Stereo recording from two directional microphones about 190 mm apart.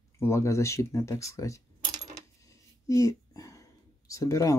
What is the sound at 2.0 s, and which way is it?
Coin, 20° right (ahead or behind).